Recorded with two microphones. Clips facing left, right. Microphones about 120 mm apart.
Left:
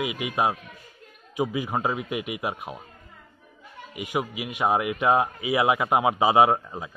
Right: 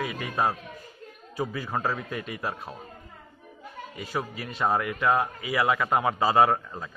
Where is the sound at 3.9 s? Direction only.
15° left (ahead or behind).